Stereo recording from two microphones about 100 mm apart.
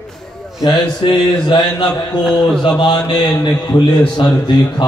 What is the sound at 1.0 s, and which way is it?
Mantra, 55° left (ahead or behind).